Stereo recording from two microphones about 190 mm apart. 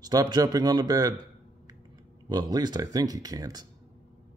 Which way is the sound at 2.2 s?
20° right (ahead or behind).